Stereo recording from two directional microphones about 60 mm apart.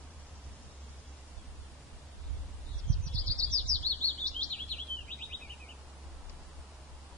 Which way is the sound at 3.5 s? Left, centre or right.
Centre.